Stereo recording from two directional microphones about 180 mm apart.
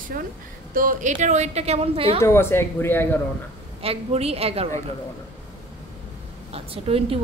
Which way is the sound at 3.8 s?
35° right (ahead or behind).